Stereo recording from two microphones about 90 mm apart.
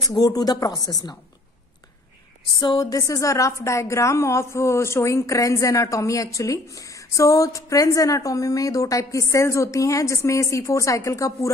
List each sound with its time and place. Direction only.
0.1 s speech: 45° left (ahead or behind)
2.8 s a woman's voice: 40° left (ahead or behind)